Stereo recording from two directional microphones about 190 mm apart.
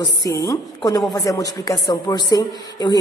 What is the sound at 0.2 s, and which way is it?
A woman's voice, 15° left (ahead or behind).